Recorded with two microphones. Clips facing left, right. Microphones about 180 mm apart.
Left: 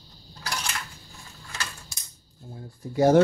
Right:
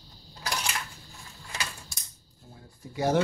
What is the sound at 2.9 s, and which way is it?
Speech, 45° left (ahead or behind).